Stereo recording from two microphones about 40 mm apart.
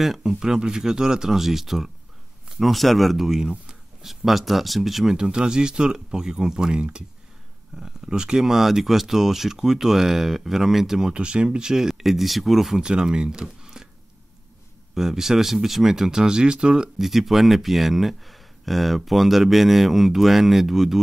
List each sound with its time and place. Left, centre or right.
0.4 s speech: centre
3.3 s speech: centre
4.0 s speech: centre
5.1 s speech: centre
8.5 s speech: centre
11.1 s speech: right
11.9 s speech: centre
12.8 s speech: right
15.0 s speech: centre
17.0 s speech: centre